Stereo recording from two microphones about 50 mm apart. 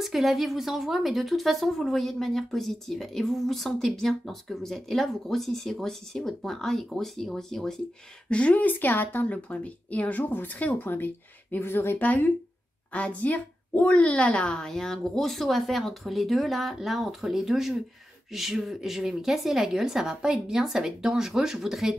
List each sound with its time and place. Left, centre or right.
0.0 s a woman's voice: centre
8.3 s speech: left
12.9 s a woman's voice: left; by 21.9 s centre